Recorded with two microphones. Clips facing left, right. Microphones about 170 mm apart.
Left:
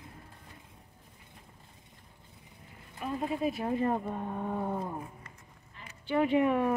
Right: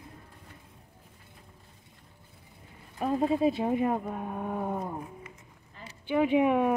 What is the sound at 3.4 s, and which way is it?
Speech, 20° right (ahead or behind).